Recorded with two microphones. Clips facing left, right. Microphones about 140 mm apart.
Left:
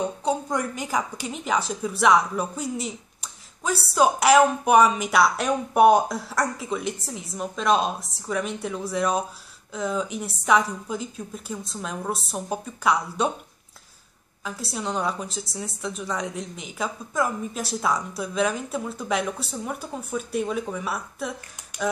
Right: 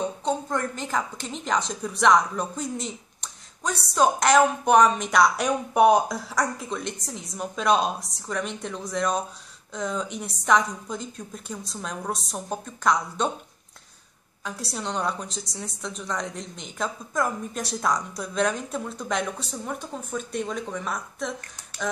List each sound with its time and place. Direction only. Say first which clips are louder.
0.0 s a woman's voice: left 1 dB; 10° left (ahead or behind)
14.4 s a woman's voice: left 2 dB; centre (ahead or behind)